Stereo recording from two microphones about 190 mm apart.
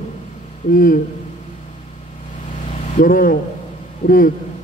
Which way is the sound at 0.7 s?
45° left (ahead or behind).